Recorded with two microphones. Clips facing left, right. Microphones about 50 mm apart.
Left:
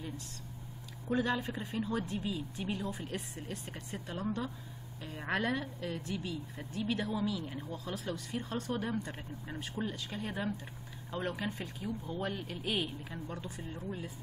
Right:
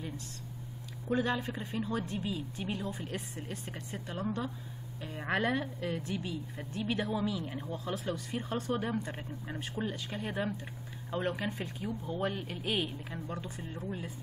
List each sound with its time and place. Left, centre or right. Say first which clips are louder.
1.0 s a woman's voice: right 1 dB; centre